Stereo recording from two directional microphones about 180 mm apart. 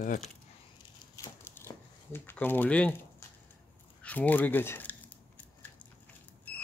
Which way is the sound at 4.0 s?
10° left (ahead or behind).